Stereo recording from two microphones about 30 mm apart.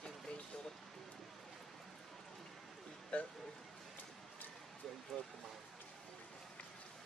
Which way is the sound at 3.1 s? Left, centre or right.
Left.